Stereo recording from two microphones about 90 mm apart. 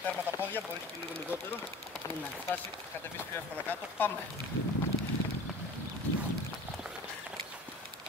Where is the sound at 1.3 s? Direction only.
20° right (ahead or behind).